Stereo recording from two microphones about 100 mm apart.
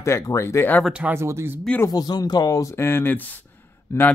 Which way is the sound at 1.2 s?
25° right (ahead or behind).